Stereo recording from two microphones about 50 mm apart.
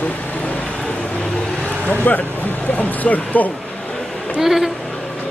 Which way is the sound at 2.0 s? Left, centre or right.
Left.